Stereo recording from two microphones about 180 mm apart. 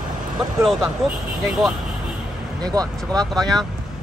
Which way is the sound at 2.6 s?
20° right (ahead or behind).